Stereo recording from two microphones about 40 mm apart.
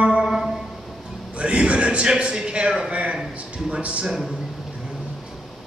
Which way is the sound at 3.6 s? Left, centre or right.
Right.